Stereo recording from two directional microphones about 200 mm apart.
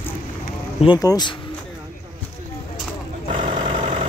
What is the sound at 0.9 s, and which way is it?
Speech, 20° left (ahead or behind).